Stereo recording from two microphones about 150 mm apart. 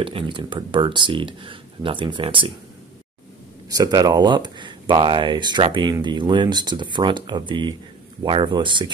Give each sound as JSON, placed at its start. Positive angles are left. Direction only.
{"t": 0.0, "sound": "speech", "side_deg": -35}
{"t": 3.6, "sound": "speech", "side_deg": -25}